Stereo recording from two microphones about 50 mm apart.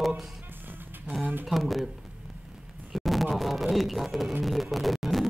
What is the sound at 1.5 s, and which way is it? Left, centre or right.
Music, centre.